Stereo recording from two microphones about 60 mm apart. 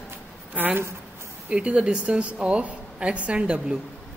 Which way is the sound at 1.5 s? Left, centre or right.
Centre.